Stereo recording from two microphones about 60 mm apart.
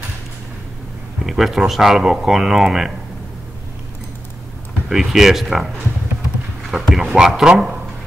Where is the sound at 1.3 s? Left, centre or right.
Centre.